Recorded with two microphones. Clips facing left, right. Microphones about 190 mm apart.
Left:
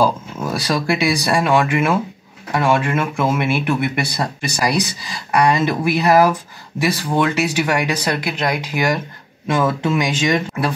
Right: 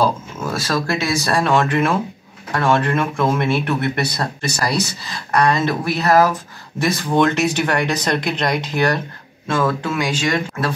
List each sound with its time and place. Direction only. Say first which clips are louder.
0.7 s speech: left 3 dB; 15° left (ahead or behind)